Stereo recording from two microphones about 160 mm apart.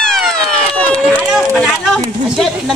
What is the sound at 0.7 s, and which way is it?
Run, 10° left (ahead or behind).